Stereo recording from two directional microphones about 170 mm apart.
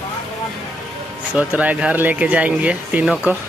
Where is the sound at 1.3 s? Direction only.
10° right (ahead or behind).